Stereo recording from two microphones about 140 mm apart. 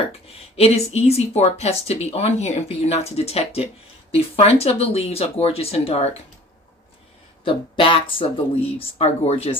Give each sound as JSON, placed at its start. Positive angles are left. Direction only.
{"t": 0.6, "sound": "speech", "side_deg": 45}
{"t": 7.4, "sound": "speech", "side_deg": 40}